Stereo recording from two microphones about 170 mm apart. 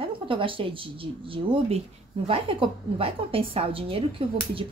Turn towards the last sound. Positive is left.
turn(degrees=-30)  # may be behind; listen again after turning